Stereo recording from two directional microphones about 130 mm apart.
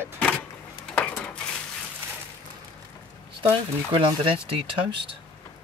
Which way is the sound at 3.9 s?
40° right (ahead or behind).